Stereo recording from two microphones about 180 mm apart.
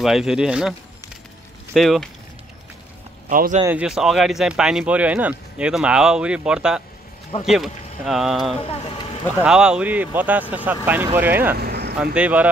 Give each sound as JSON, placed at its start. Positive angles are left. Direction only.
{"t": 0.0, "sound": "speech", "side_deg": 0}
{"t": 3.3, "sound": "speech", "side_deg": -50}
{"t": 3.6, "sound": "speech", "side_deg": -5}
{"t": 8.5, "sound": "speech", "side_deg": 30}
{"t": 9.4, "sound": "speech", "side_deg": -5}
{"t": 11.5, "sound": "vehicle", "side_deg": -60}
{"t": 12.0, "sound": "speech", "side_deg": -5}